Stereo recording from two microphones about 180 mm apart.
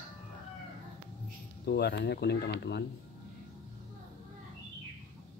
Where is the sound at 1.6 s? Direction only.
65° left (ahead or behind).